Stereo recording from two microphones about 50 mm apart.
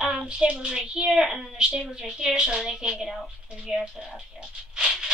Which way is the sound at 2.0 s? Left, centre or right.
Centre.